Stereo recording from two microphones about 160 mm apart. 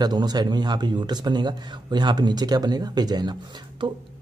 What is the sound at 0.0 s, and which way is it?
Speech, 25° right (ahead or behind).